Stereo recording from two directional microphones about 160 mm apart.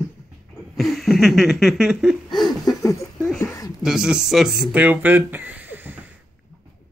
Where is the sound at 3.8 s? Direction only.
5° right (ahead or behind).